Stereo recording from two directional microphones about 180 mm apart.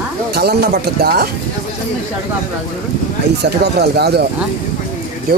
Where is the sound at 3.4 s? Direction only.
65° right (ahead or behind).